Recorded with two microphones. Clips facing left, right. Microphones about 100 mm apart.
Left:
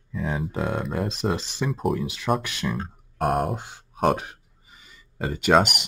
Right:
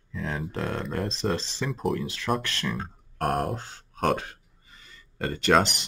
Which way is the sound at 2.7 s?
Centre (ahead or behind).